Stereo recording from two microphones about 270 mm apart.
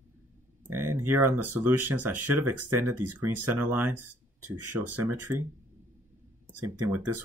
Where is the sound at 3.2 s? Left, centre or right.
Right.